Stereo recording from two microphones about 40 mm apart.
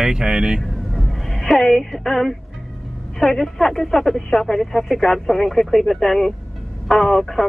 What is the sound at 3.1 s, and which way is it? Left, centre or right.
Speech, centre.